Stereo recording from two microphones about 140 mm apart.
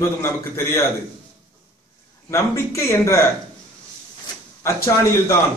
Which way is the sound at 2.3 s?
20° left (ahead or behind).